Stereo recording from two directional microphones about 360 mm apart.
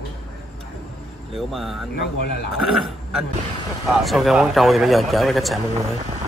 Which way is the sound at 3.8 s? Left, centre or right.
Centre.